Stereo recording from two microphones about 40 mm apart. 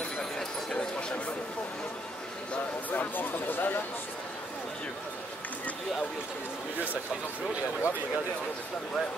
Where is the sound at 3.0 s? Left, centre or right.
Left.